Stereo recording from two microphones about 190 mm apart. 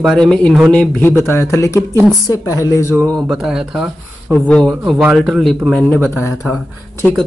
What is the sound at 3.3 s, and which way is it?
Speech, 5° right (ahead or behind).